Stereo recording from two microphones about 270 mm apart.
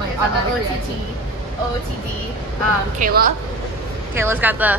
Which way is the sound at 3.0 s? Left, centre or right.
Right.